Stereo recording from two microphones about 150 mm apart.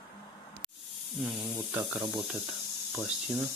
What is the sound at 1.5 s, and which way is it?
Speech, 15° right (ahead or behind).